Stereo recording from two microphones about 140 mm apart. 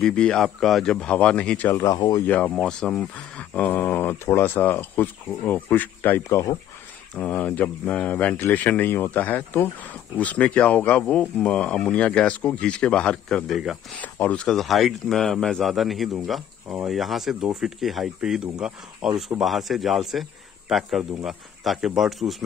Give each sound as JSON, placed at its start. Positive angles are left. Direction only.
{"t": 0.0, "sound": "speech", "side_deg": 5}
{"t": 2.0, "sound": "speech", "side_deg": 30}
{"t": 2.2, "sound": "speech", "side_deg": 10}
{"t": 7.2, "sound": "speech", "side_deg": 10}
{"t": 13.9, "sound": "speech", "side_deg": 10}